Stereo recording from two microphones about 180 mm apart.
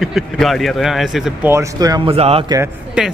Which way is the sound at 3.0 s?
5° right (ahead or behind).